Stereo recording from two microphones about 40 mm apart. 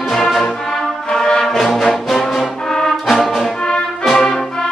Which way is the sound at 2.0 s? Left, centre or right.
Centre.